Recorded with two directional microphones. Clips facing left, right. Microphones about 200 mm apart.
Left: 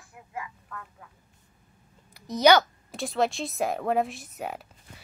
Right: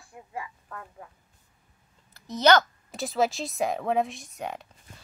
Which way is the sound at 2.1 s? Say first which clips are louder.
Left 1 dB; 15° left (ahead or behind).